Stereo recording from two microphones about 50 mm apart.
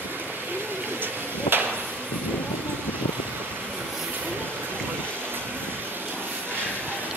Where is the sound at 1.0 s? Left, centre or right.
Right.